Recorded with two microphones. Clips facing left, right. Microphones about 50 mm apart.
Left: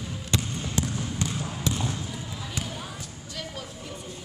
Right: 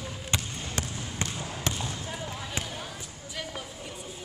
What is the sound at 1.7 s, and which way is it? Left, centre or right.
Basketball bounce, right.